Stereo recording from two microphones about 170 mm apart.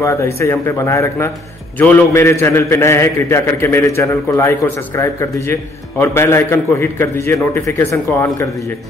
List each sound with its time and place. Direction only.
0.0 s a man's voice: 15° left (ahead or behind)